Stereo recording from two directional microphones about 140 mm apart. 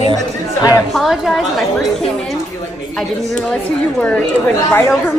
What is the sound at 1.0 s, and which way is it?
Speech, centre (ahead or behind).